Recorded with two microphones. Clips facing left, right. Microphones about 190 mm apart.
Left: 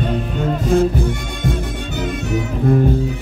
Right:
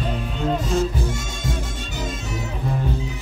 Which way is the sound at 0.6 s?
55° left (ahead or behind).